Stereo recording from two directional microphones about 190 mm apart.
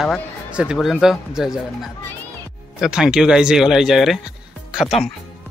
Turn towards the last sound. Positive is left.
turn(degrees=0)  # may be behind; listen again after turning